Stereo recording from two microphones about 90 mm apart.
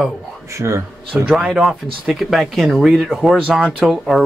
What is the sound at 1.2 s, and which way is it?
Speech, 5° right (ahead or behind).